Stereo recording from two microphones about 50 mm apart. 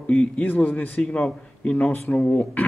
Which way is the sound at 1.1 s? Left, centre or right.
Left.